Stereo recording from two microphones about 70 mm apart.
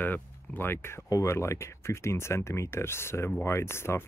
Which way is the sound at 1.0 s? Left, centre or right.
Left.